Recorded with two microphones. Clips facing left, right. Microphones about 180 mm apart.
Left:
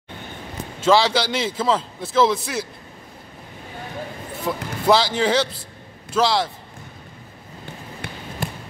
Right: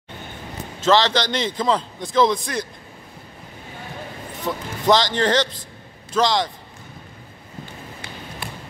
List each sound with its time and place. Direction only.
0.7 s a man's voice: 10° left (ahead or behind)
4.5 s a man's voice: 5° left (ahead or behind)
8.0 s basketball bounce: 60° left (ahead or behind)
8.4 s basketball bounce: 45° left (ahead or behind)